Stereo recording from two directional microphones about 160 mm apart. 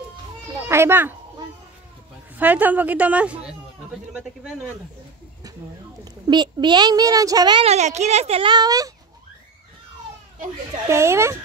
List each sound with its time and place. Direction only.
0.7 s a child's voice: 15° right (ahead or behind)
2.3 s a woman's voice: 10° right (ahead or behind)
6.2 s a woman's voice: 25° right (ahead or behind)
7.6 s speech: 45° right (ahead or behind); by 8.9 s 25° right (ahead or behind)
10.9 s a woman's voice: 15° right (ahead or behind)